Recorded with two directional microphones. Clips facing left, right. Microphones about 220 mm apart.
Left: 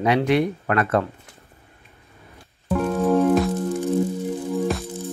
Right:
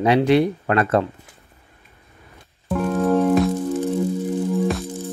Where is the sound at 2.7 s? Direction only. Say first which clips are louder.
Right 1 dB; centre (ahead or behind).